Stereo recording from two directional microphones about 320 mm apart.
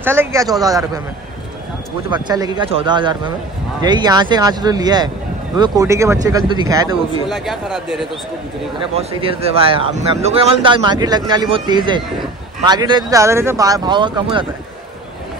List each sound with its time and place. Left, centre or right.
0.0 s speech: centre
2.0 s speech: centre
7.2 s a man's voice: centre
8.9 s speech: centre